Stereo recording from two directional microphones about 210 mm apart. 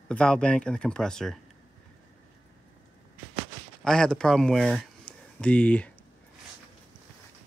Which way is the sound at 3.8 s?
5° left (ahead or behind).